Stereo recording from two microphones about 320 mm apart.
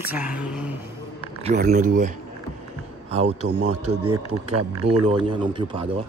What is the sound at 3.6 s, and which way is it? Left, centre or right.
Speech, right.